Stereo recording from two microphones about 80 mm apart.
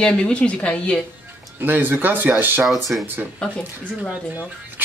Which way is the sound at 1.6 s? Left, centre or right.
Right.